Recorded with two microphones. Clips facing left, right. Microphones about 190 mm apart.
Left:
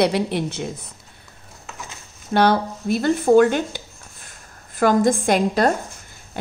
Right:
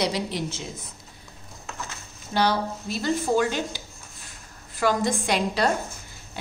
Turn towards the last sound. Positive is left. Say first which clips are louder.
# left 6 dB
turn(degrees=50)  # may be behind; listen again after turning